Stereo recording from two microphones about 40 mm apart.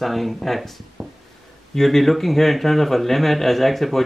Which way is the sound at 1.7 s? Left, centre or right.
Centre.